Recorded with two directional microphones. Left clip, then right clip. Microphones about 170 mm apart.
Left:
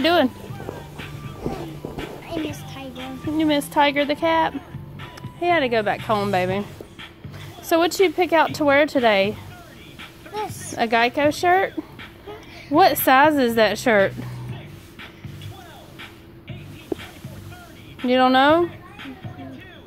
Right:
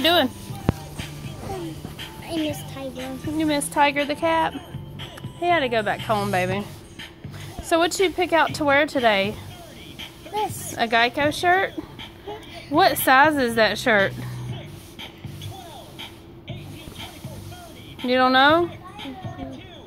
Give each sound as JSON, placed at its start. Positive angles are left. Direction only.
{"t": 0.0, "sound": "music", "side_deg": 30}
{"t": 2.2, "sound": "music", "side_deg": 10}
{"t": 2.7, "sound": "speech", "side_deg": 10}
{"t": 3.3, "sound": "a woman's voice", "side_deg": 30}
{"t": 7.6, "sound": "speech", "side_deg": 25}
{"t": 9.9, "sound": "a sound", "side_deg": 10}
{"t": 10.8, "sound": "a woman's voice", "side_deg": 25}
{"t": 18.0, "sound": "speech", "side_deg": 25}